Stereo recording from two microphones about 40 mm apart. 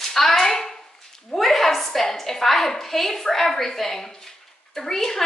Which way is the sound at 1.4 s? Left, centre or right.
Centre.